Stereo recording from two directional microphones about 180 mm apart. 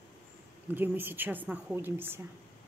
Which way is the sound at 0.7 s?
10° right (ahead or behind).